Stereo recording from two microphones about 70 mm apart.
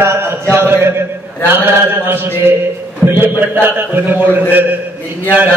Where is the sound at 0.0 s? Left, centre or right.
Right.